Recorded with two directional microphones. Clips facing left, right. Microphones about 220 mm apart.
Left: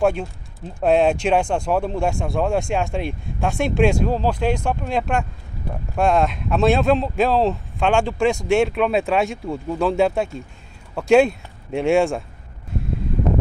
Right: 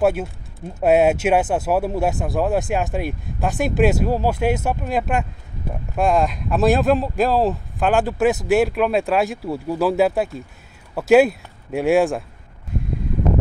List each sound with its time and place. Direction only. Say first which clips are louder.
0.0 s speech: right 1 dB; 5° right (ahead or behind)